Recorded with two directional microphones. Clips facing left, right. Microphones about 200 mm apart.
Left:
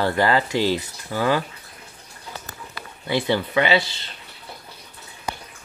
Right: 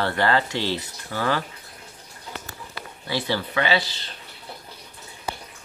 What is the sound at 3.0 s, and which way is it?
Speech, 20° left (ahead or behind).